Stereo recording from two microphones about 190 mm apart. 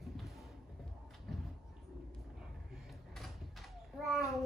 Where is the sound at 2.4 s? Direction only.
Centre (ahead or behind).